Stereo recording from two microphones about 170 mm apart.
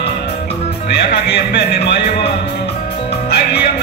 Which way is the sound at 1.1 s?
80° left.